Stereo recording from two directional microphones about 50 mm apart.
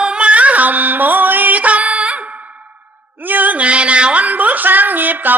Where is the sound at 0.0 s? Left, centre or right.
Right.